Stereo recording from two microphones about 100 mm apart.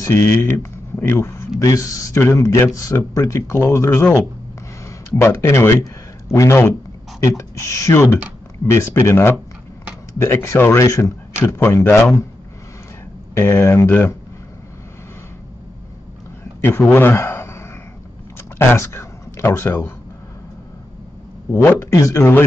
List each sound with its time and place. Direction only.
0.0 s a man's voice: 30° left (ahead or behind)
6.2 s a man's voice: 35° left (ahead or behind)
13.3 s a man's voice: 25° left (ahead or behind)
16.6 s a man's voice: 20° left (ahead or behind)
18.7 s speech: 25° left (ahead or behind)
21.5 s a man's voice: 25° left (ahead or behind)